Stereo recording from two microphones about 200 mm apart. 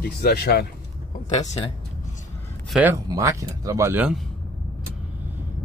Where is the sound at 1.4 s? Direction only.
30° left (ahead or behind).